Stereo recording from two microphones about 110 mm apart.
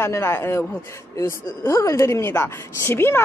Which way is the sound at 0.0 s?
20° left (ahead or behind).